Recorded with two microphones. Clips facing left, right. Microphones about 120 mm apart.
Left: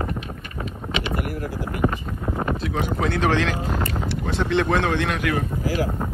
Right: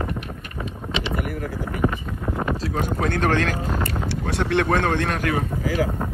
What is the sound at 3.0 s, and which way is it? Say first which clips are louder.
Speech: even; 50° right (ahead or behind).